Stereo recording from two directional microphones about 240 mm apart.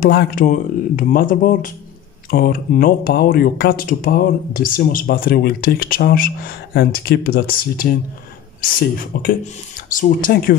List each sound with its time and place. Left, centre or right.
0.0 s speech: left